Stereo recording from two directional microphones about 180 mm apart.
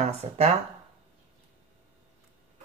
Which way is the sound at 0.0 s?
40° right (ahead or behind).